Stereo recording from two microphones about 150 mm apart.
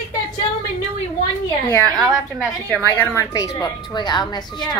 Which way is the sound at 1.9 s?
5° right (ahead or behind).